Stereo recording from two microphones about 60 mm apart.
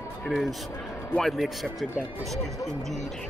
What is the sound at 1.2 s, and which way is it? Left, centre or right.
Speech, centre.